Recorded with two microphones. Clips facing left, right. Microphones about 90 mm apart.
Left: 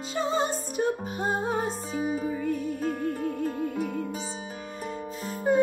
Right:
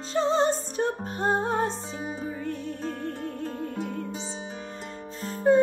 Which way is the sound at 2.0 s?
30° right (ahead or behind).